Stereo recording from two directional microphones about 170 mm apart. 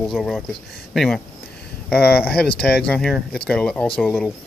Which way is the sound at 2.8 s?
5° left (ahead or behind).